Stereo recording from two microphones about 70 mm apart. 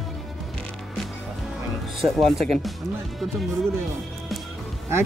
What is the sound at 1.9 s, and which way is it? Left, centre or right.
Speech, centre.